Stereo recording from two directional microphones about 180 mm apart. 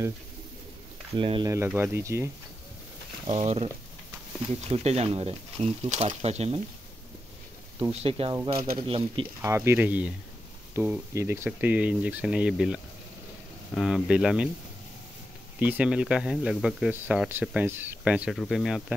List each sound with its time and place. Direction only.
1.1 s speech: 30° right (ahead or behind)
1.7 s speech: 15° right (ahead or behind)
3.3 s speech: 35° right (ahead or behind)
7.9 s speech: 35° right (ahead or behind)
9.4 s speech: 15° right (ahead or behind)
15.6 s speech: 5° right (ahead or behind)